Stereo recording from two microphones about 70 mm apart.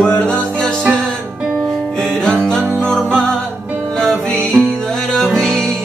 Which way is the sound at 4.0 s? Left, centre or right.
Centre.